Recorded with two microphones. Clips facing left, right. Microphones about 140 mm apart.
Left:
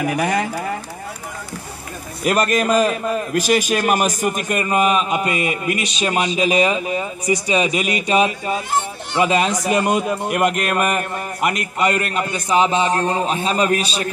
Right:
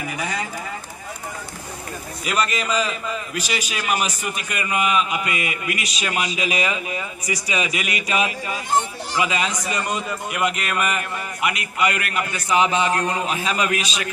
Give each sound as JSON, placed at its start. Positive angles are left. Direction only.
{"t": 0.0, "sound": "speech", "side_deg": 60}
{"t": 2.2, "sound": "a man's voice", "side_deg": 50}